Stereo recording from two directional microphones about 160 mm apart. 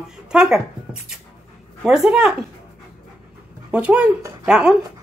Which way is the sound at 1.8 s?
Centre (ahead or behind).